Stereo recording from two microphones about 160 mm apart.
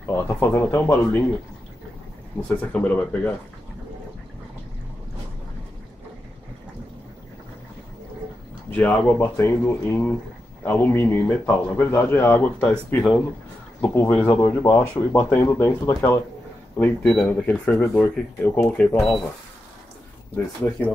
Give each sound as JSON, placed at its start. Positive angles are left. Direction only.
{"t": 0.1, "sound": "speech", "side_deg": 15}
{"t": 2.4, "sound": "speech", "side_deg": 10}
{"t": 8.6, "sound": "speech", "side_deg": 10}
{"t": 10.6, "sound": "speech", "side_deg": 10}
{"t": 17.0, "sound": "speech", "side_deg": 5}
{"t": 20.3, "sound": "speech", "side_deg": 10}